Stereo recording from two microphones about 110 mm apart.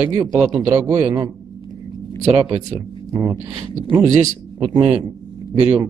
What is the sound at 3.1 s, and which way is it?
Speech, 25° right (ahead or behind).